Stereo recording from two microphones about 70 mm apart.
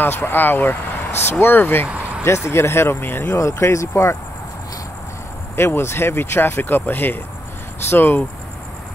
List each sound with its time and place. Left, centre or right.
0.0 s speech: left
1.9 s vehicle: centre
2.2 s speech: left
3.3 s speech: left
5.6 s speech: left